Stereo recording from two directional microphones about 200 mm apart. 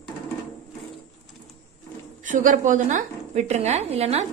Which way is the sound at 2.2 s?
40° right (ahead or behind).